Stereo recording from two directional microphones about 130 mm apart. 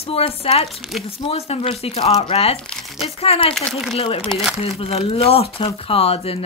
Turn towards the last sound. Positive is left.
turn(degrees=50)  # may be behind; listen again after turning